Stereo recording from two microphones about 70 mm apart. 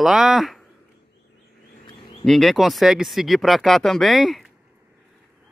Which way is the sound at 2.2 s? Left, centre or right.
Centre.